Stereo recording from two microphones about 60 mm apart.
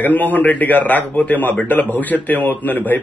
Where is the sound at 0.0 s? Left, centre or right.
Left.